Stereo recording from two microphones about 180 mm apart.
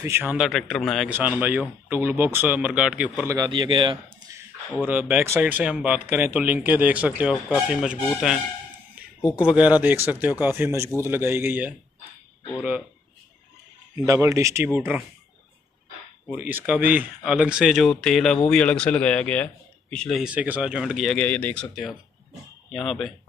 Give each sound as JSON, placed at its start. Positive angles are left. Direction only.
{"t": 0.0, "sound": "speech", "side_deg": -10}
{"t": 1.1, "sound": "speech", "side_deg": -10}
{"t": 3.3, "sound": "a man's voice", "side_deg": -25}
{"t": 4.7, "sound": "speech", "side_deg": -10}
{"t": 13.9, "sound": "speech", "side_deg": -15}
{"t": 16.3, "sound": "speech", "side_deg": -10}
{"t": 22.7, "sound": "speech", "side_deg": 0}